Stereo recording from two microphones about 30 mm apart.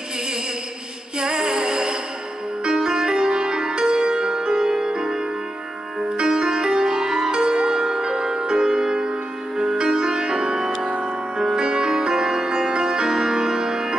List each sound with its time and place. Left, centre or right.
1.2 s music: right
6.2 s music: right